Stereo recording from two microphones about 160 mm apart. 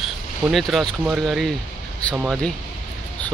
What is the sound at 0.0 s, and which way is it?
Speech, centre (ahead or behind).